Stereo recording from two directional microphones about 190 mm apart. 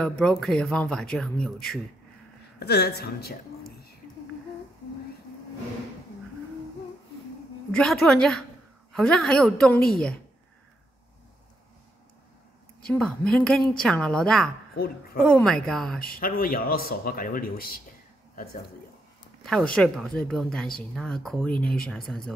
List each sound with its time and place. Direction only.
0.0 s speech: 5° left (ahead or behind)
2.6 s a woman's voice: 60° left (ahead or behind)
7.7 s speech: 5° left (ahead or behind)
12.8 s speech: 5° left (ahead or behind)
14.8 s speech: 55° left (ahead or behind)
15.2 s speech: 5° left (ahead or behind)
16.1 s speech: 50° left (ahead or behind)
18.3 s a sound: 50° left (ahead or behind)
19.4 s speech: 5° left (ahead or behind)